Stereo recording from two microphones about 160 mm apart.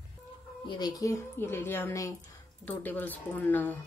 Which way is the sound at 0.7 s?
25° left (ahead or behind).